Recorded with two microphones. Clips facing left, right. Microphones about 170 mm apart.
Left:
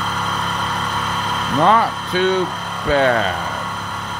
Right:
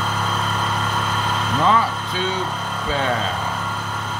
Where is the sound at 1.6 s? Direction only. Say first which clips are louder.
Left 4 dB; 60° left (ahead or behind).